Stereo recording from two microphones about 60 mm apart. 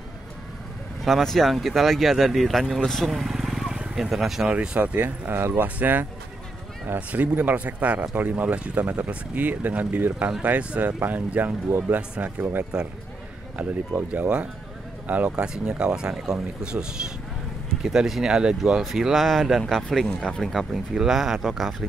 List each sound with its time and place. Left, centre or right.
1.0 s speech: centre
4.5 s speech: right
11.0 s speech: right
15.4 s speech: centre
18.8 s speech: centre
20.7 s speech: centre